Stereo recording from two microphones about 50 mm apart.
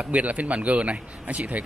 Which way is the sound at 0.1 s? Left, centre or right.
Right.